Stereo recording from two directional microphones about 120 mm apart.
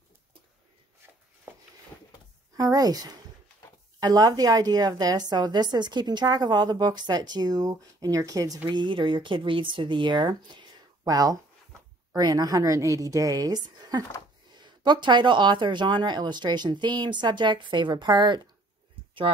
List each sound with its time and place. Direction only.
2.5 s a woman's voice: 30° right (ahead or behind)
8.6 s a woman's voice: 40° right (ahead or behind)